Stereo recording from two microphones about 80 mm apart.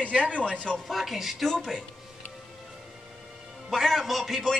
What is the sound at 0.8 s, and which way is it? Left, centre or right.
Speech, centre.